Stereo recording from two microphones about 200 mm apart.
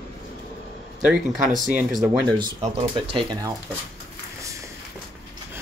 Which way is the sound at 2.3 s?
25° right (ahead or behind).